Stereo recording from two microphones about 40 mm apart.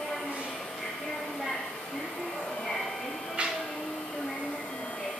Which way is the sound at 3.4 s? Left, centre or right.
Right.